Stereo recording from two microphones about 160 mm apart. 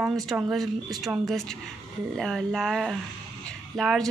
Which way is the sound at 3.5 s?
5° left (ahead or behind).